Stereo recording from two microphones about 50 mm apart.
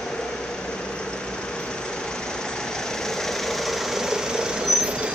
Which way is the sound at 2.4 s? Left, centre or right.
Centre.